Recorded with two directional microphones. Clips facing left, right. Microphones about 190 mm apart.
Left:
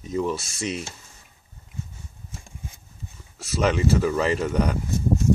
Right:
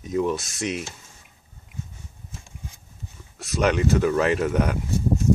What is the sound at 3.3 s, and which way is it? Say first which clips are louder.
Speech: right 1 dB; centre (ahead or behind).